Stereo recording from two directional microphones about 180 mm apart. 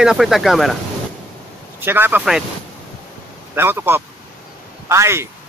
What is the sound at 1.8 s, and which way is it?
Speech, 10° right (ahead or behind).